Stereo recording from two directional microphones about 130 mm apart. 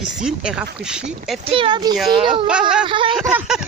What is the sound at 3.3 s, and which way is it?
Speech, 5° right (ahead or behind).